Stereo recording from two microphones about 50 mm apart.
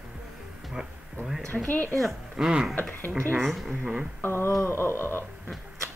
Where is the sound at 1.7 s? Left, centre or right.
Left.